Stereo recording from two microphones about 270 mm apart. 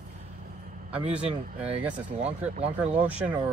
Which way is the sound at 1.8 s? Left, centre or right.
Centre.